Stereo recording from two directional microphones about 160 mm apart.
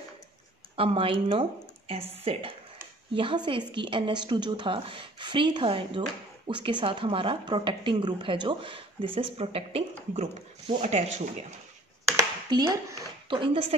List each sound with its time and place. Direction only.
0.7 s a woman's voice: 35° right (ahead or behind)
12.2 s a sound: 20° right (ahead or behind)
13.3 s a woman's voice: 30° right (ahead or behind)